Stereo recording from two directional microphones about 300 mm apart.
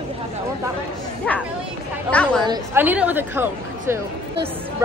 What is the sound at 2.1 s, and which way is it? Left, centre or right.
Speech, centre.